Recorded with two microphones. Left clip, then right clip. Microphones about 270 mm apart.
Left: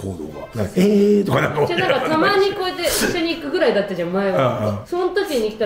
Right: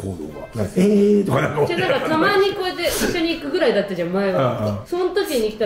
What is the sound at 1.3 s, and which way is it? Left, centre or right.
Speech, left.